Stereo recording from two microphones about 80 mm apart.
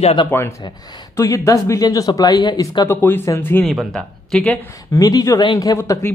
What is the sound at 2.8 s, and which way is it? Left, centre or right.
Speech, left.